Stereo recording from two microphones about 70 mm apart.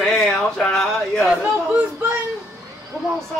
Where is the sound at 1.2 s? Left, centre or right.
Centre.